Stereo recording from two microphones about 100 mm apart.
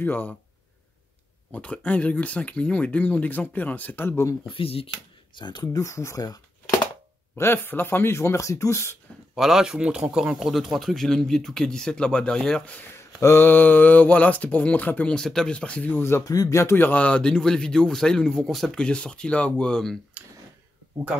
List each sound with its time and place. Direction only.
0.0 s speech: 20° left (ahead or behind)
1.5 s speech: 15° left (ahead or behind)
4.5 s speech: 70° left (ahead or behind)
5.3 s speech: 50° left (ahead or behind)
7.3 s speech: 20° left (ahead or behind)
9.3 s speech: 5° right (ahead or behind)
12.9 s speech: 25° left (ahead or behind)
16.3 s speech: 35° left (ahead or behind); by 20.0 s 5° left (ahead or behind)